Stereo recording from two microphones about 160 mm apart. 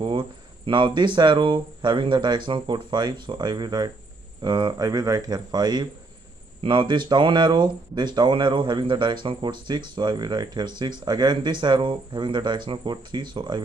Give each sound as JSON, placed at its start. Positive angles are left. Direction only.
{"t": 0.0, "sound": "speech", "side_deg": -30}